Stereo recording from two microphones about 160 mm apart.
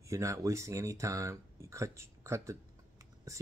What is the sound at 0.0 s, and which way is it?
Speech, 20° right (ahead or behind).